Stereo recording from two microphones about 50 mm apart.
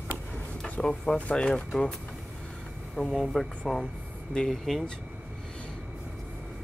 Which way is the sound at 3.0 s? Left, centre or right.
Centre.